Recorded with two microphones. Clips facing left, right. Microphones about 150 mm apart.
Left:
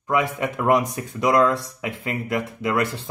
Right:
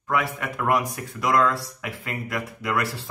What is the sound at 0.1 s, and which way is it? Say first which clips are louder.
Speech: left 4 dB; 20° left (ahead or behind).